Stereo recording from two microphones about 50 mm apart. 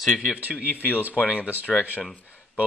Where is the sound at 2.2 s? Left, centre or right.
Left.